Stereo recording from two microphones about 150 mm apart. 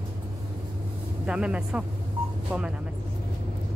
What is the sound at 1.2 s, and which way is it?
Speech, 5° right (ahead or behind).